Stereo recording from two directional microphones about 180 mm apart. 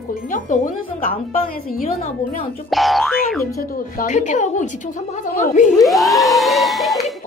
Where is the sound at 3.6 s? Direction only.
45° left (ahead or behind).